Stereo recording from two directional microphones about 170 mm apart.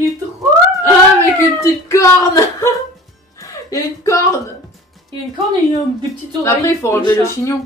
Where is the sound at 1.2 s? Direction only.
20° left (ahead or behind).